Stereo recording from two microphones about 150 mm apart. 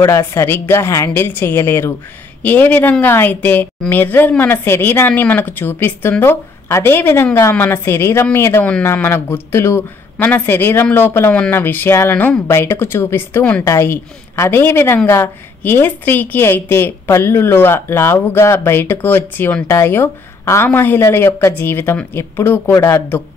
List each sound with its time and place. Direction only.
0.0 s a woman's voice: 15° left (ahead or behind)